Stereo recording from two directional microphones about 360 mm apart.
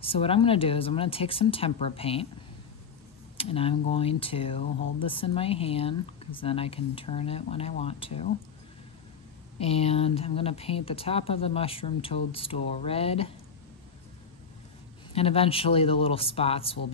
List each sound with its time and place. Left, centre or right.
0.0 s speech: centre
3.3 s speech: centre
9.6 s speech: centre
15.1 s speech: centre